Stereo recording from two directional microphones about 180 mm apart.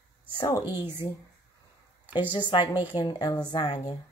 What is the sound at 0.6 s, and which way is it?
Speech, 15° right (ahead or behind).